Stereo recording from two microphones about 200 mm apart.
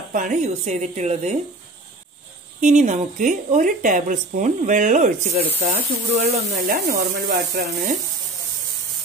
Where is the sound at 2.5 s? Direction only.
35° right (ahead or behind).